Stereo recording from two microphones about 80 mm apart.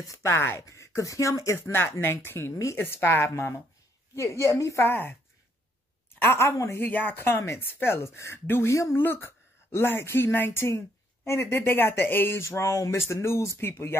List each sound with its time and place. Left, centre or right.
0.1 s speech: left
6.2 s speech: left
6.8 s speech: left
9.0 s a woman's voice: left